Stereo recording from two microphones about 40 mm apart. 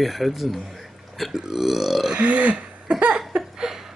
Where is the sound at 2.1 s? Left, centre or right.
Right.